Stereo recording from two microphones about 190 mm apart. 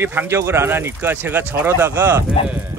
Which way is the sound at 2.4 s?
10° right (ahead or behind).